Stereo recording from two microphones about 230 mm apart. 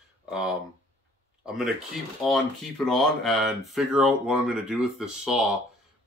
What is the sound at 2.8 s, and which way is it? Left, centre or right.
Speech, centre.